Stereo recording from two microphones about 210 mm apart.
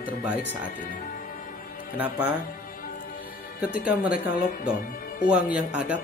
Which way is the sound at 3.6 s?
5° right (ahead or behind).